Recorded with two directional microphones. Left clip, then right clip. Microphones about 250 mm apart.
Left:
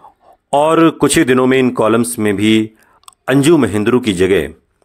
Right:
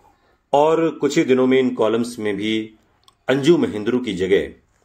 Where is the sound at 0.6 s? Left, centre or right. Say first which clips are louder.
Left 6 dB; left.